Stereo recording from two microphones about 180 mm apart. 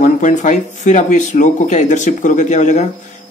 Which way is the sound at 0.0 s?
45° left (ahead or behind).